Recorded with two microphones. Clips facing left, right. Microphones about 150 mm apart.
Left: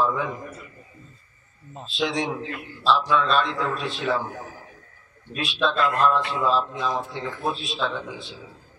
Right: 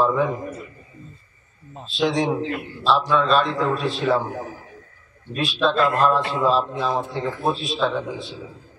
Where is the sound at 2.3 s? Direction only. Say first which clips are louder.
Right 7 dB; 25° right (ahead or behind).